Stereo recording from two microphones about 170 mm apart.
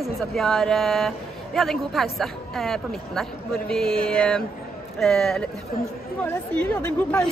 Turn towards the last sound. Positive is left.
turn(degrees=5)  # may be behind; listen again after turning